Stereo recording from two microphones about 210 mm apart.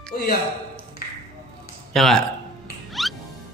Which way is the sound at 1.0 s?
45° left (ahead or behind).